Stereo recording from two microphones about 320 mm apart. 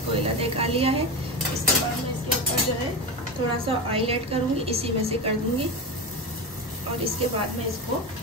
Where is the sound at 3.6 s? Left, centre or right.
Centre.